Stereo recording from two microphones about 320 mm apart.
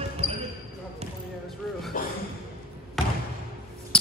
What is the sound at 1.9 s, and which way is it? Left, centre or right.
Speech, left.